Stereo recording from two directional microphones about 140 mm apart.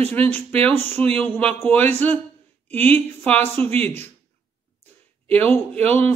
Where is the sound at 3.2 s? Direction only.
10° left (ahead or behind).